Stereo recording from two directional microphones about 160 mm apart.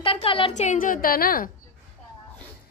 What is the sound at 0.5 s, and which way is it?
A woman's voice, 50° left (ahead or behind).